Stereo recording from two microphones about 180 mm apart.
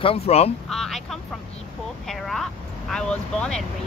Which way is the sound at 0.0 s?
35° left (ahead or behind).